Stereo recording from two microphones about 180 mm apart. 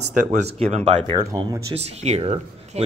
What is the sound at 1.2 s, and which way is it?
Speech, 20° right (ahead or behind).